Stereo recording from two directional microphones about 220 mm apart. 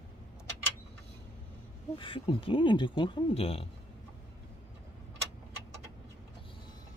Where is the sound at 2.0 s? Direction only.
25° left (ahead or behind).